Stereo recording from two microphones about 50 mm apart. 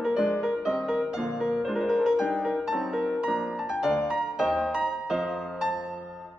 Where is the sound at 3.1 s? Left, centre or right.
Centre.